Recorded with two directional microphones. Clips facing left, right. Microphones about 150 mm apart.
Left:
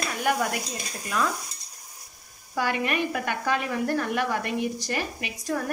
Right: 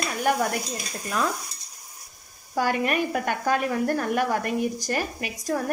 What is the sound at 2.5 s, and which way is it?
Speech, 40° right (ahead or behind).